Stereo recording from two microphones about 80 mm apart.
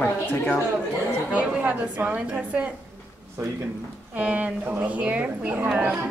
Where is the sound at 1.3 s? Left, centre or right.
Centre.